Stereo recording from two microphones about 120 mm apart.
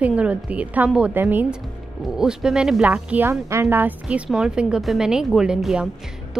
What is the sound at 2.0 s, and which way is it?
A woman's voice, 5° right (ahead or behind).